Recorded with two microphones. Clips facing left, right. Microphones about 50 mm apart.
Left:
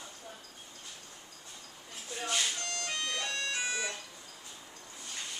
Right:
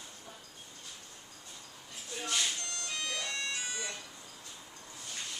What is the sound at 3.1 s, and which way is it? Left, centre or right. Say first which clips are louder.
Music: left 2 dB; left.